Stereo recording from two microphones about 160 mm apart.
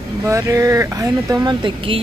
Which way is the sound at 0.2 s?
20° right (ahead or behind).